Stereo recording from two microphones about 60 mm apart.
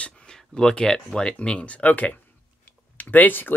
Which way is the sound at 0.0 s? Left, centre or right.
Centre.